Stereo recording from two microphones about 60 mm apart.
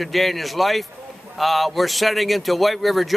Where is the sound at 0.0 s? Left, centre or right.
Centre.